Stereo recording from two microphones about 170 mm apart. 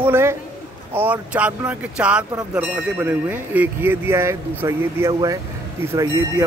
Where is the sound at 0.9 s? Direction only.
10° right (ahead or behind).